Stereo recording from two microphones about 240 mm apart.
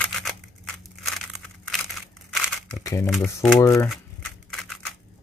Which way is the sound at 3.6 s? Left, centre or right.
Centre.